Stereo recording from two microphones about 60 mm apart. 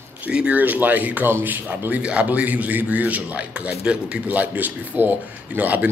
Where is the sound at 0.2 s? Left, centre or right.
Right.